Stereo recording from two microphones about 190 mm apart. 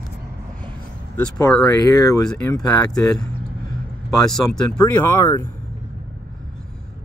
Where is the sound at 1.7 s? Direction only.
20° left (ahead or behind).